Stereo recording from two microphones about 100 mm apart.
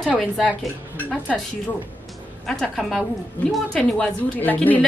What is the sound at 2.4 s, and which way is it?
Speech, centre (ahead or behind).